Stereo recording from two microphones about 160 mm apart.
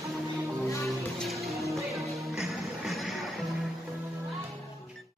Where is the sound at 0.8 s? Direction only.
Centre (ahead or behind).